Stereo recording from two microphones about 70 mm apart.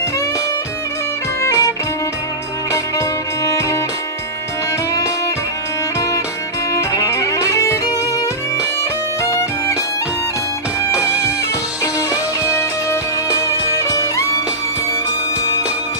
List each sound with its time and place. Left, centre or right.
1.4 s music: left
6.7 s music: left
9.2 s music: left
10.9 s music: centre
11.8 s music: left
13.7 s music: left